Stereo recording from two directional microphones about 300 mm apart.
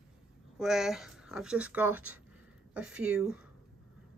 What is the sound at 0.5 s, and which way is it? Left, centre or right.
Speech, centre.